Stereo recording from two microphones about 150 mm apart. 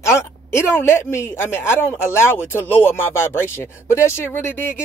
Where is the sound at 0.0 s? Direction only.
20° left (ahead or behind).